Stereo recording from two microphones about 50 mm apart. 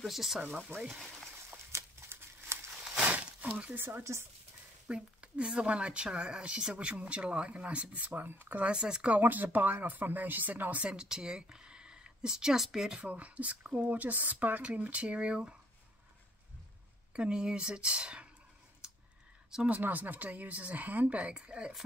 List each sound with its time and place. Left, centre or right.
0.0 s speech: centre
1.7 s crumpling: right
2.5 s a sound: right
3.0 s a sound: right
3.7 s speech: right
4.0 s speech: right
4.8 s speech: right
8.7 s speech: centre
9.2 s speech: right
10.9 s speech: centre
13.0 s speech: right
17.1 s speech: centre
19.7 s speech: right; by 21.7 s centre